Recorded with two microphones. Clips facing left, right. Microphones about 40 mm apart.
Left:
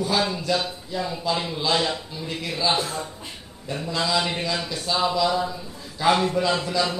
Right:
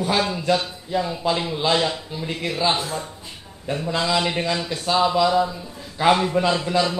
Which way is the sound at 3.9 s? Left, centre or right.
Right.